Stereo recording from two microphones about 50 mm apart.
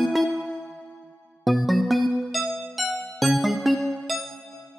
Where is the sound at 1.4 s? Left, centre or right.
Centre.